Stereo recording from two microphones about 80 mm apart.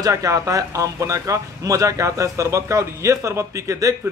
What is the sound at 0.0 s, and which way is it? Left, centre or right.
A man's voice, right.